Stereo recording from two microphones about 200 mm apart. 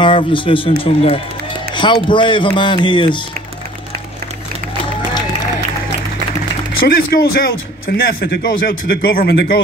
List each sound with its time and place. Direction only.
0.0 s speech: 25° left (ahead or behind)
6.9 s a man's voice: 50° left (ahead or behind)